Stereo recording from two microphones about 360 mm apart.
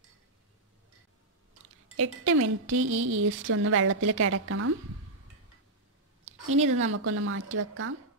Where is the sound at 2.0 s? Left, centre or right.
Right.